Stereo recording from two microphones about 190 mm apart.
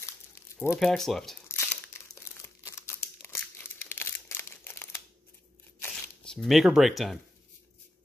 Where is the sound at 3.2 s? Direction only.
10° left (ahead or behind).